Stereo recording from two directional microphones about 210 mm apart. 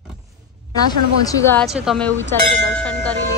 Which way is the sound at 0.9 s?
15° left (ahead or behind).